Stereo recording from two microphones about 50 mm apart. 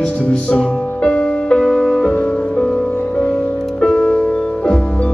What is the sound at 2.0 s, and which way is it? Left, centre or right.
Music, centre.